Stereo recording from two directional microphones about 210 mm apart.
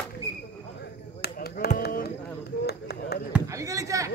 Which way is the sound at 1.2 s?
45° left (ahead or behind).